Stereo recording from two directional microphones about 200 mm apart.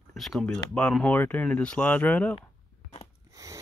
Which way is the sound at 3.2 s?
15° right (ahead or behind).